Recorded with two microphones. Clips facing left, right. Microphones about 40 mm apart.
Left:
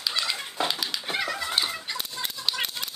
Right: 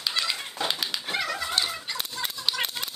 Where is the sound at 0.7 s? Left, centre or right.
Centre.